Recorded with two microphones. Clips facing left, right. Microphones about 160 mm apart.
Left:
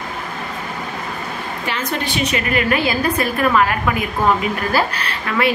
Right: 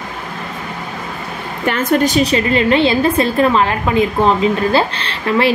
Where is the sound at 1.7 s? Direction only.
50° right (ahead or behind).